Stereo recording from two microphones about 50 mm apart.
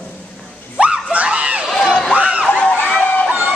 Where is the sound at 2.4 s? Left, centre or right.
Left.